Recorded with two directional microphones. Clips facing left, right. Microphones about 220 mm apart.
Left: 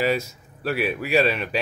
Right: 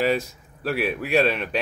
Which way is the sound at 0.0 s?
Centre (ahead or behind).